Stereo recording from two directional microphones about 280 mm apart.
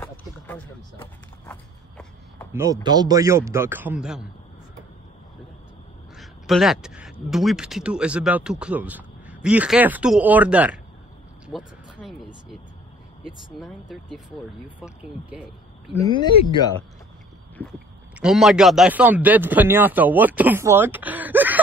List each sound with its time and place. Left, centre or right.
0.0 s a sound: centre
2.5 s speech: centre
6.1 s speech: centre
11.4 s a sound: centre
13.2 s speech: centre
16.0 s speech: centre
18.2 s speech: centre